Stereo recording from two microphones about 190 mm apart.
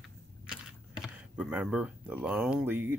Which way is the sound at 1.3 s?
5° right (ahead or behind).